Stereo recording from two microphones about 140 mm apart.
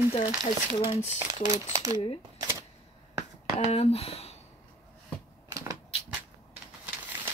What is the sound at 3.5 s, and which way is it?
Speech, 50° left (ahead or behind).